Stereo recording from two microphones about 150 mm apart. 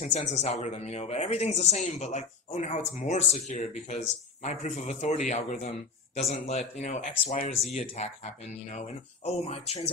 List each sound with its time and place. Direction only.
0.0 s speech: 50° left (ahead or behind)